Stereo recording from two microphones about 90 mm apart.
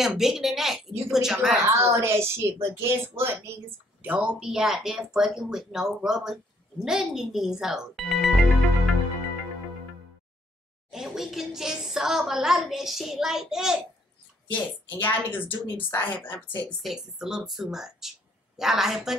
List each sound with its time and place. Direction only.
0.0 s a woman's voice: 5° right (ahead or behind)
1.6 s a woman's voice: 35° right (ahead or behind)
4.0 s speech: 15° right (ahead or behind); by 8.9 s centre (ahead or behind)
10.9 s a woman's voice: 5° right (ahead or behind)
14.5 s a woman's voice: 20° left (ahead or behind)
16.8 s a woman's voice: 5° right (ahead or behind)